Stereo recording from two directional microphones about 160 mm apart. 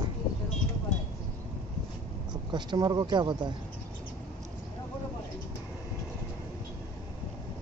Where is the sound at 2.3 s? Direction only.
25° right (ahead or behind).